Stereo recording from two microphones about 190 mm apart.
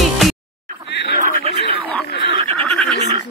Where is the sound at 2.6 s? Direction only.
5° left (ahead or behind).